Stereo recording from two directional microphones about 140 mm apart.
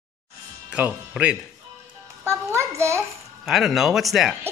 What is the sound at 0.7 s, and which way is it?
Speech, 10° right (ahead or behind).